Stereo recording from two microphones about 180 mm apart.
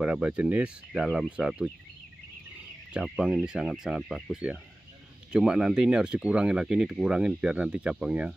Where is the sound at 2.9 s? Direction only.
5° right (ahead or behind).